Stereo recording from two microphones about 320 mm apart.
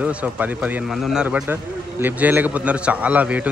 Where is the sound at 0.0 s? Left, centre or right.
Centre.